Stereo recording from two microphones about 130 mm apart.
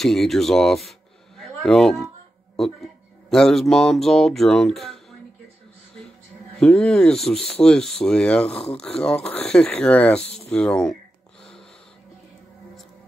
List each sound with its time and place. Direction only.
0.0 s speech: centre (ahead or behind)
6.6 s speech: 5° left (ahead or behind)